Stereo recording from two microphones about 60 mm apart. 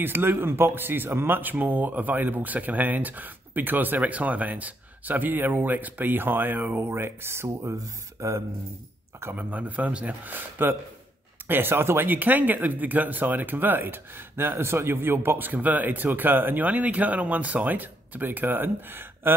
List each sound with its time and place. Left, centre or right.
0.0 s speech: right
6.8 s speech: right
9.3 s speech: right
10.6 s speech: right